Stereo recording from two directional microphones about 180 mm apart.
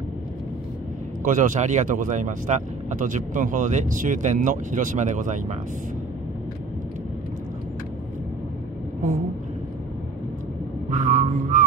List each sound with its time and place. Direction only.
1.2 s speech: 45° right (ahead or behind)
10.9 s vehicle: 45° right (ahead or behind)